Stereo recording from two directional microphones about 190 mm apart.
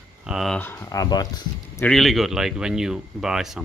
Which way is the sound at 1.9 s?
Centre (ahead or behind).